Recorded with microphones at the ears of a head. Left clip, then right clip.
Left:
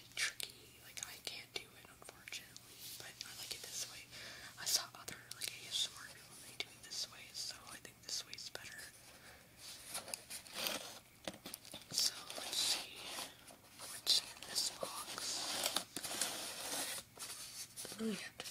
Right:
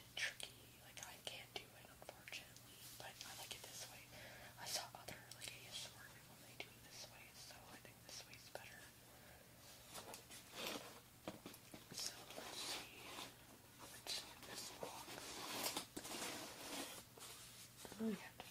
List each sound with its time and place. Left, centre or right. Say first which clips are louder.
0.9 s whispering: left 5 dB; left
2.8 s whispering: left 5 dB; left
9.7 s a sound: left 8 dB; left
13.7 s whispering: left 14 dB; left